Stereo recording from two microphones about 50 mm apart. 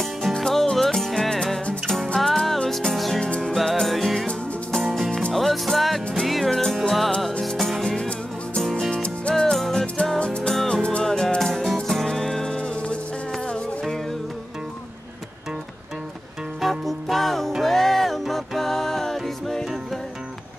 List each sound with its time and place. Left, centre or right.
0.0 s music: centre
3.2 s music: centre
3.8 s music: centre
5.3 s music: centre
8.9 s music: left
9.3 s music: centre
10.1 s music: centre
10.5 s music: centre
10.8 s music: left
11.1 s music: centre
16.6 s music: centre